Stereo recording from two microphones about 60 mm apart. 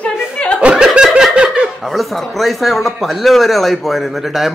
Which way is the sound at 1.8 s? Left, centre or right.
Centre.